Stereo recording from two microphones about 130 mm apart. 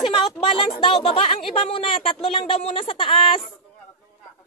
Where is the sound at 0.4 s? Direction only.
40° left (ahead or behind).